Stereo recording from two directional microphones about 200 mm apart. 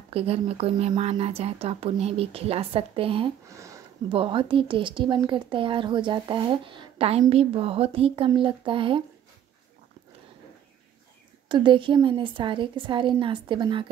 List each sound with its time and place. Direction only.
0.1 s a woman's voice: 30° right (ahead or behind)
3.4 s speech: 15° right (ahead or behind)
4.1 s a woman's voice: 25° right (ahead or behind)
11.4 s a woman's voice: 25° right (ahead or behind)